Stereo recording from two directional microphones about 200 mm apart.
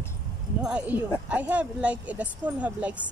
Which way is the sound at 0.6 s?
5° right (ahead or behind).